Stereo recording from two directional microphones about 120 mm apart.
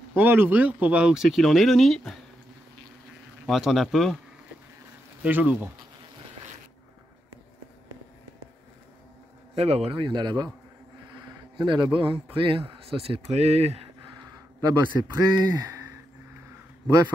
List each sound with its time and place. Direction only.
0.1 s speech: 15° right (ahead or behind); by 2.1 s centre (ahead or behind)
3.4 s speech: centre (ahead or behind)
5.2 s speech: 10° right (ahead or behind)
9.6 s a man's voice: 55° right (ahead or behind); by 10.5 s 40° right (ahead or behind)
11.5 s a man's voice: 40° right (ahead or behind); by 13.8 s 60° right (ahead or behind)
14.3 s speech: 35° right (ahead or behind)